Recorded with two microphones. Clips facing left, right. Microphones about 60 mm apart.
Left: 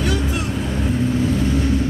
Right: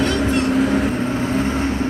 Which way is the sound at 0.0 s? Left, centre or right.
Centre.